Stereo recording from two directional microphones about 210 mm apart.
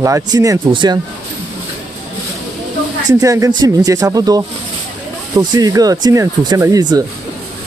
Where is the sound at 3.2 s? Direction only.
15° right (ahead or behind).